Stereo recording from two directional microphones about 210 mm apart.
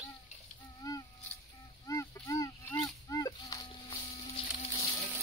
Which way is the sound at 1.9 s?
15° left (ahead or behind).